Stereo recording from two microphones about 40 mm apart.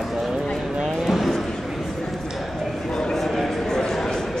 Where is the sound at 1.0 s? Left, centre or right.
Centre.